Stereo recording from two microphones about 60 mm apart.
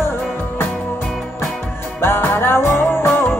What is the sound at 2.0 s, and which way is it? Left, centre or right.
Music, left.